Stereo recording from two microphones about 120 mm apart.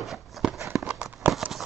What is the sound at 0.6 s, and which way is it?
Walk, 25° right (ahead or behind).